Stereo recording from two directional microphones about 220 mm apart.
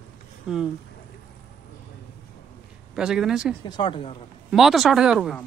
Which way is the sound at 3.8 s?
25° left (ahead or behind).